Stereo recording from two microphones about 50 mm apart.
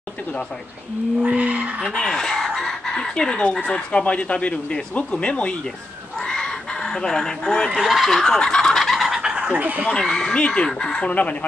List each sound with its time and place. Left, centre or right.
1.2 s skidding: right
1.9 s speech: centre
6.1 s chicken: centre
7.8 s speech: centre
8.4 s turkey: centre
8.8 s fowl: centre
9.4 s speech: right
9.9 s speech: centre